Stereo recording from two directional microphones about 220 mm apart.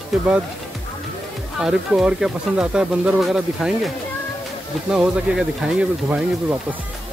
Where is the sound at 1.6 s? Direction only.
5° right (ahead or behind).